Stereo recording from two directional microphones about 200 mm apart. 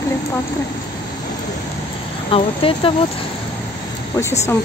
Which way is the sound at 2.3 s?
25° left (ahead or behind).